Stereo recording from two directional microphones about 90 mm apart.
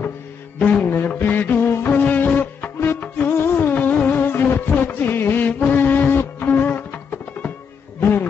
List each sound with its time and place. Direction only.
0.6 s music: 15° left (ahead or behind)